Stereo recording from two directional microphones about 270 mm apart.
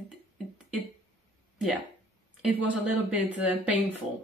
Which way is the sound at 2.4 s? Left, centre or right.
Centre.